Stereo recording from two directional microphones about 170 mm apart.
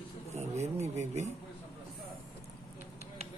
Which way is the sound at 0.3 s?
40° right (ahead or behind).